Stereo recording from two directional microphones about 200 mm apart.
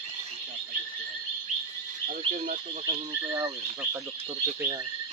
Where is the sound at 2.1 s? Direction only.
40° right (ahead or behind).